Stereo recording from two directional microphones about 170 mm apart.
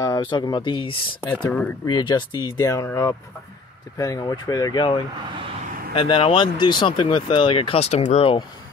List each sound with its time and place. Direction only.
0.0 s speech: 25° left (ahead or behind)